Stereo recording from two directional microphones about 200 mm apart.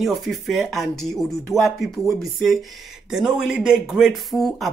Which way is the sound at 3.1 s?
5° right (ahead or behind).